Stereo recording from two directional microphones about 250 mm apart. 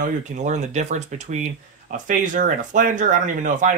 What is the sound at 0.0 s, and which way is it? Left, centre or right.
Speech, right.